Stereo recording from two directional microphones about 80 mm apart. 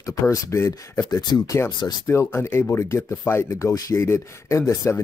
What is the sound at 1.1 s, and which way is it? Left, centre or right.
Speech, left.